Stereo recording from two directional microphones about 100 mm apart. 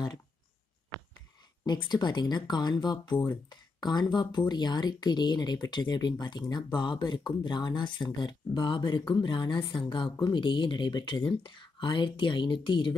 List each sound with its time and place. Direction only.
1.7 s speech: 45° left (ahead or behind)